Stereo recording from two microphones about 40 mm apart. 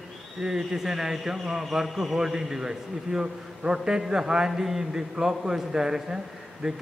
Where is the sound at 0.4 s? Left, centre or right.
Centre.